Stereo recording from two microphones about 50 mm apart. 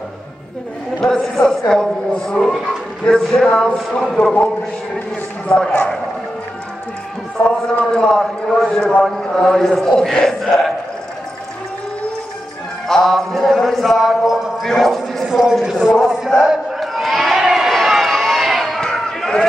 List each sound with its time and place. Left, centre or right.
1.0 s a man's voice: centre
5.5 s a man's voice: centre
7.4 s a man's voice: left
7.9 s a man's voice: centre
12.8 s a sound: centre
14.7 s speech: centre
15.2 s a man's voice: centre
16.8 s run: centre
18.8 s a sound: centre